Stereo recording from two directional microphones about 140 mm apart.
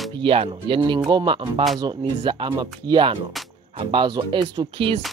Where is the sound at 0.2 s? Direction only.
40° right (ahead or behind).